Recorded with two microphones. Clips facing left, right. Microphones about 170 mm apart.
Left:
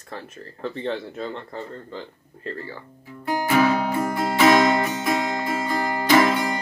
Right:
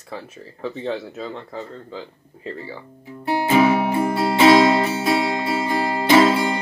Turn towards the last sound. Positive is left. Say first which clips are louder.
# right 3 dB
turn(degrees=-25)  # may be behind; listen again after turning